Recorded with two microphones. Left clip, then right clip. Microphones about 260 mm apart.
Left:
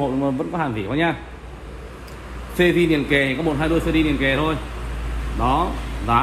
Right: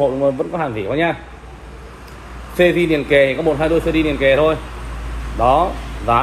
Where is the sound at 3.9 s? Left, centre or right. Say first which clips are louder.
Right 4 dB; left.